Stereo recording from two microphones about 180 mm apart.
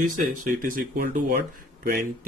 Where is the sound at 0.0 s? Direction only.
45° right (ahead or behind).